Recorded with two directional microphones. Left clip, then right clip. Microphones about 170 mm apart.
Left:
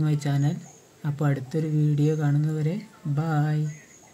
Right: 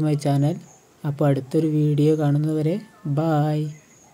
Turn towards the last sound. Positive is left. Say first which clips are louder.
# right 7 dB
turn(degrees=-35)  # may be behind; listen again after turning